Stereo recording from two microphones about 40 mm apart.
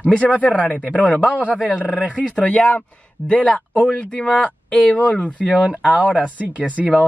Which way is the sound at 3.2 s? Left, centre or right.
Right.